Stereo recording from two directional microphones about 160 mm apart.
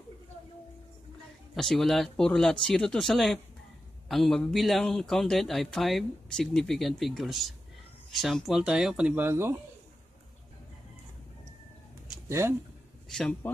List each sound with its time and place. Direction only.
1.5 s speech: centre (ahead or behind); by 9.6 s 15° right (ahead or behind)
12.3 s speech: 15° right (ahead or behind)
13.1 s speech: centre (ahead or behind)